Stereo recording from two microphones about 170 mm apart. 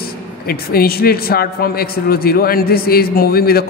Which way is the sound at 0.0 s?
60° left (ahead or behind).